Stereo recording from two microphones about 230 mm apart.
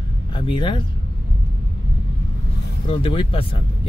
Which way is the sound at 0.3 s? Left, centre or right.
Left.